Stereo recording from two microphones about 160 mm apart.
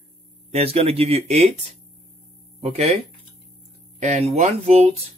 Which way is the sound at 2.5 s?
40° right (ahead or behind).